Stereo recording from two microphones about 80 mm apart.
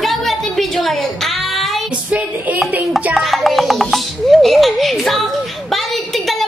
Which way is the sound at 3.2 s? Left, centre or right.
Centre.